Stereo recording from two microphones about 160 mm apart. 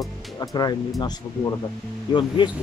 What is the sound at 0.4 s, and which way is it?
Speech, 25° left (ahead or behind).